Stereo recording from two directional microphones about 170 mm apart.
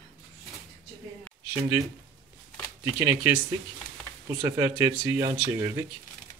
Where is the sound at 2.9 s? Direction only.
15° right (ahead or behind).